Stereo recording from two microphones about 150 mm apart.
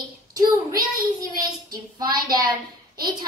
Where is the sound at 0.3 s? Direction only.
25° right (ahead or behind).